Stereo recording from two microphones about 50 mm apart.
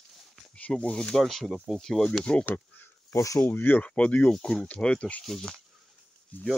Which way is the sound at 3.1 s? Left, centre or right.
Left.